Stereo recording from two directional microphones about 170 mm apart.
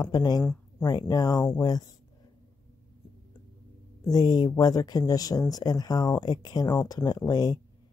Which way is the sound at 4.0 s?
25° left (ahead or behind).